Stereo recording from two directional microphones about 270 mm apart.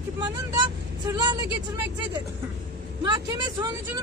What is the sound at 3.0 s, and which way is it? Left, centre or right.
Speech, centre.